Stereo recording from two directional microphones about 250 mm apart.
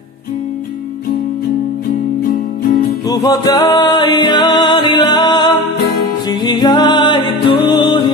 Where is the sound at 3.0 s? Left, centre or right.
Centre.